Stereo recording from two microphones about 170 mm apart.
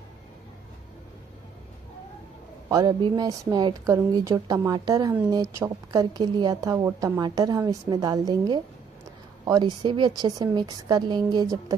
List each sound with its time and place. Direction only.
2.7 s a woman's voice: 20° right (ahead or behind)